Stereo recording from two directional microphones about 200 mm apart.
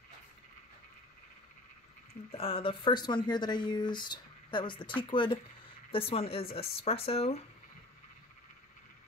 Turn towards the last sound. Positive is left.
turn(degrees=30)  # may be behind; listen again after turning